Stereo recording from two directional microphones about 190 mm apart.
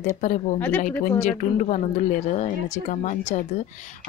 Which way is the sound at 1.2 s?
40° left (ahead or behind).